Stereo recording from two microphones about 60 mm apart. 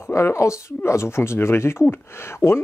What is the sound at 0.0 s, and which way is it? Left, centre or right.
Speech, left.